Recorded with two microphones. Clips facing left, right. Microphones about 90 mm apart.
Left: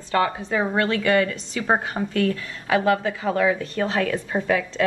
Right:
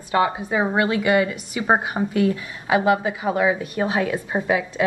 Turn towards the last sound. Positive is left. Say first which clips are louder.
# right 1 dB
turn(degrees=-20)  # may be behind; listen again after turning